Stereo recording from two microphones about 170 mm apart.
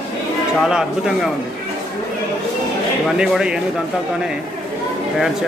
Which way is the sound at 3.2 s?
5° right (ahead or behind).